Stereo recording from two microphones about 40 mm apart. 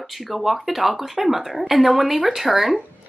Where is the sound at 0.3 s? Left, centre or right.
Centre.